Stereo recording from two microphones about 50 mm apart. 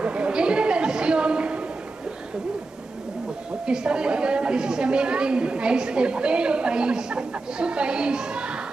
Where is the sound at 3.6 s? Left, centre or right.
Centre.